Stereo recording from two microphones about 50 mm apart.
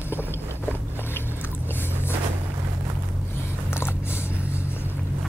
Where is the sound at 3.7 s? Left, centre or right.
Left.